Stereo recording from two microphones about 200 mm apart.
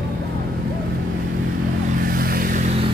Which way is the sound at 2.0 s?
45° right (ahead or behind).